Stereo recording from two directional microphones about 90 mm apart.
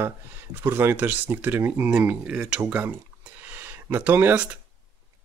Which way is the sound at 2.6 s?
20° right (ahead or behind).